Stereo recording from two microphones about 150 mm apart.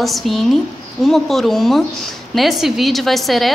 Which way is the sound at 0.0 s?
Centre (ahead or behind).